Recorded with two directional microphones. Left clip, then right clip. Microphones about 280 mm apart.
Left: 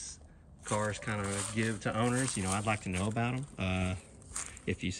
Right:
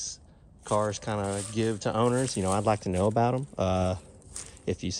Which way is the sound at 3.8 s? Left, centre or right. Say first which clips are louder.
Right 9 dB; centre.